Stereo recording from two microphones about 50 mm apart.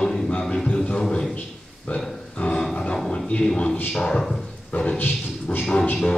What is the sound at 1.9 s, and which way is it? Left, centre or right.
Speech, left.